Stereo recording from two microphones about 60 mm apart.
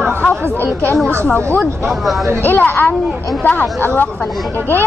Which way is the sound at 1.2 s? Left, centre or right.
Left.